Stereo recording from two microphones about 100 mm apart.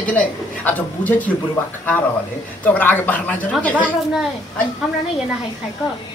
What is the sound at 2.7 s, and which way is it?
A woman's voice, 20° left (ahead or behind).